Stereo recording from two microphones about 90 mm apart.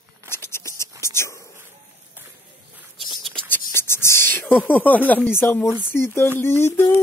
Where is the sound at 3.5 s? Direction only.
30° left (ahead or behind).